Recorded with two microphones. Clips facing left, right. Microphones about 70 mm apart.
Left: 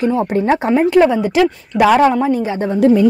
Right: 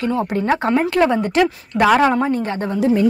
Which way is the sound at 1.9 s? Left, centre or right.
Centre.